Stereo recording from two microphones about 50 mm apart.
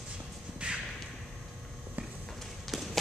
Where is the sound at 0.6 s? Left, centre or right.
Right.